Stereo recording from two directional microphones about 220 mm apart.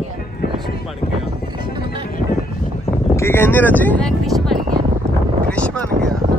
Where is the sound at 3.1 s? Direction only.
10° left (ahead or behind).